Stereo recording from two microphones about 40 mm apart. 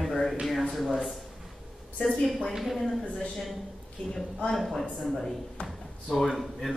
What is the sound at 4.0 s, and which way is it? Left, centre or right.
Speech, left.